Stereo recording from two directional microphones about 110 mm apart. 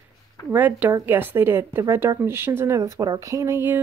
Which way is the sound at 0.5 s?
15° right (ahead or behind).